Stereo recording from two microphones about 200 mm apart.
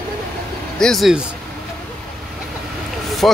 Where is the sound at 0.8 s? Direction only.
Centre (ahead or behind).